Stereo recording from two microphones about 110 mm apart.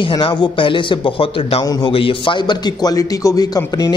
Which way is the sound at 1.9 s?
55° left (ahead or behind).